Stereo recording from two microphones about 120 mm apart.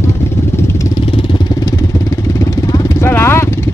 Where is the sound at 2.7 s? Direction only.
20° left (ahead or behind).